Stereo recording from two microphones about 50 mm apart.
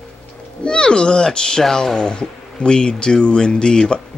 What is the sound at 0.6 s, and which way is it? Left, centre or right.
Speech, centre.